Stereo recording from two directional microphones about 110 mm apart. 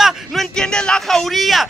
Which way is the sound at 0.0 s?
Centre (ahead or behind).